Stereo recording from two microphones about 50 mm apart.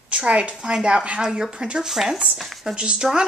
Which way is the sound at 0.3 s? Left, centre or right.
Right.